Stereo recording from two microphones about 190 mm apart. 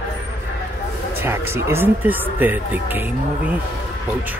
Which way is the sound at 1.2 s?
15° right (ahead or behind).